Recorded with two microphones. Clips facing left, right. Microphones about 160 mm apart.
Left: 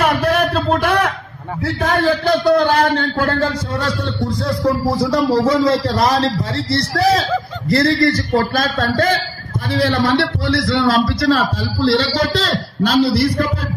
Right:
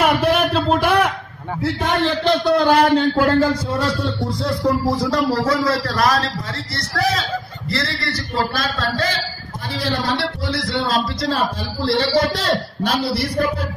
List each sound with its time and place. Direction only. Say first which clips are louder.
0.0 s a sound: left 1 dB; 5° right (ahead or behind)
1.6 s a man's voice: left 2 dB; centre (ahead or behind)
4.6 s a man's voice: left 2 dB; 15° left (ahead or behind); by 7.2 s 35° left (ahead or behind)
7.7 s a man's voice: left 11 dB; 45° left (ahead or behind); by 12.9 s 90° left